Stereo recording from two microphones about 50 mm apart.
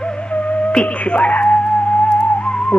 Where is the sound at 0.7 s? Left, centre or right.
Left.